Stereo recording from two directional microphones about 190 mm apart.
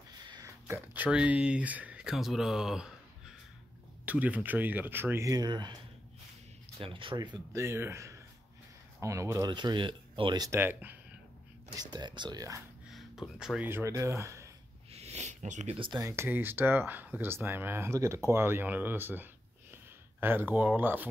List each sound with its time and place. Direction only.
0.3 s speech: 15° right (ahead or behind)
4.0 s speech: 10° right (ahead or behind)
6.8 s speech: 25° right (ahead or behind); by 11.0 s 10° right (ahead or behind)
11.7 s speech: 20° right (ahead or behind)
12.9 s speech: centre (ahead or behind)
14.9 s speech: 35° right (ahead or behind); by 21.1 s 10° right (ahead or behind)